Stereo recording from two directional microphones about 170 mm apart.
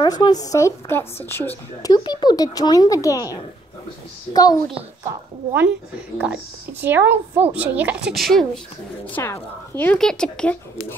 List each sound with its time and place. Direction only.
0.0 s a woman's voice: 25° left (ahead or behind)
1.9 s a woman's voice: 25° left (ahead or behind)
6.1 s a woman's voice: 5° right (ahead or behind)
9.1 s speech: 15° left (ahead or behind)